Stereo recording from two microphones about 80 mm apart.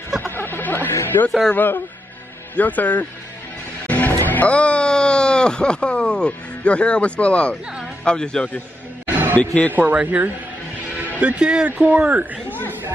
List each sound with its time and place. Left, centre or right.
0.2 s music: left
1.0 s speech: left
3.8 s music: left
4.1 s speech: left
9.8 s speech: right